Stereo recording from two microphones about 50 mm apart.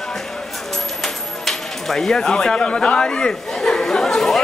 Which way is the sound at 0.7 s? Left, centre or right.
Centre.